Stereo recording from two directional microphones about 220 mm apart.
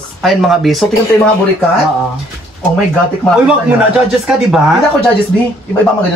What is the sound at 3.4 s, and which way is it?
Speech, 5° right (ahead or behind).